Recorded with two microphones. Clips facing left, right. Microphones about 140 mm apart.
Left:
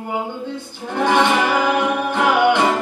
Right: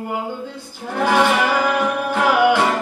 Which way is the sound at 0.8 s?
5° right (ahead or behind).